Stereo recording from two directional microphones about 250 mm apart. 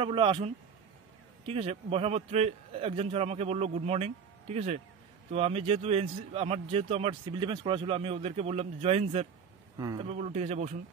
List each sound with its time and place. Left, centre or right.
0.0 s speech: right
9.8 s speech: centre
10.0 s speech: right